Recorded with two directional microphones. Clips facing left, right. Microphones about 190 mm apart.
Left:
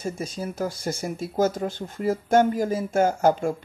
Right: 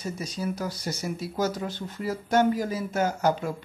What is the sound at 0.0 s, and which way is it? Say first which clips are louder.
Speech: left 2 dB; 50° left (ahead or behind).